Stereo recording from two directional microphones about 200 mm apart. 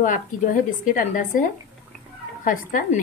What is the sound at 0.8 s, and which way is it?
A woman's voice, 40° left (ahead or behind).